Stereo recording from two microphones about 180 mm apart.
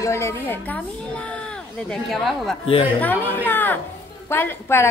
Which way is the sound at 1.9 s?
Centre (ahead or behind).